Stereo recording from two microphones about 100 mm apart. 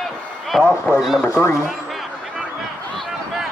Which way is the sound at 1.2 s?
25° left (ahead or behind).